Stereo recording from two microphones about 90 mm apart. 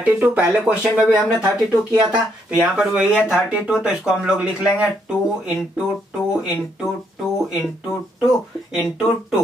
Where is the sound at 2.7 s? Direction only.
10° right (ahead or behind).